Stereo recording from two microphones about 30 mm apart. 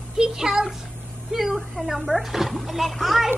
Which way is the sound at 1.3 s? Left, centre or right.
Centre.